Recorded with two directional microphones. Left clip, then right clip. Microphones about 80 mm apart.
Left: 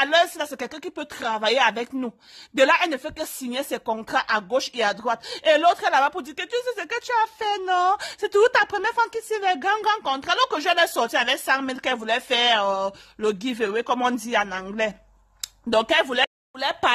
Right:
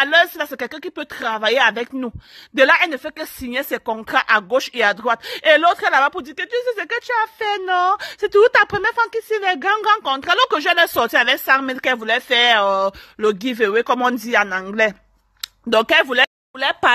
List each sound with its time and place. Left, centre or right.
0.0 s a woman's voice: right
2.9 s speech: centre
3.5 s a woman's voice: right
6.1 s speech: centre
6.7 s a woman's voice: right
7.0 s speech: centre
7.4 s a woman's voice: centre